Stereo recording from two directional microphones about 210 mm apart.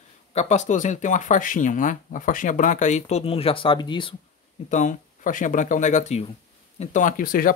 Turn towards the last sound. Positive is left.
turn(degrees=45)  # may be behind; listen again after turning